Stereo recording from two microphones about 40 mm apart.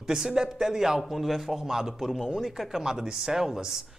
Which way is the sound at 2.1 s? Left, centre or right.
Centre.